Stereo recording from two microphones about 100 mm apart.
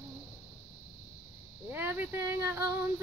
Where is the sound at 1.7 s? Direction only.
20° right (ahead or behind).